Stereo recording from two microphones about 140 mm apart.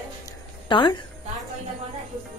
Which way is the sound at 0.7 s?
35° left (ahead or behind).